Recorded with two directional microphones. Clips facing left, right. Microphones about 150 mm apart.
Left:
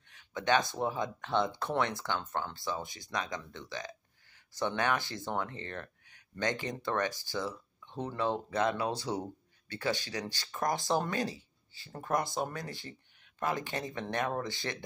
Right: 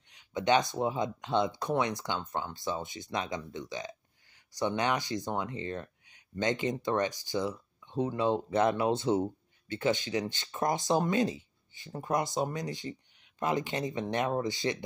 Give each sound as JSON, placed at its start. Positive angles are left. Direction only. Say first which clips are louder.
{"t": 0.1, "sound": "speech", "louder": "right 3 dB", "side_deg": -20}